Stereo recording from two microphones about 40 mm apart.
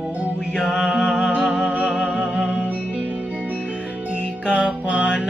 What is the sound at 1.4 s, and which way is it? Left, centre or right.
Music, centre.